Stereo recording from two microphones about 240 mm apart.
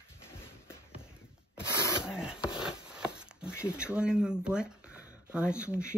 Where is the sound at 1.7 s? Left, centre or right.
Centre.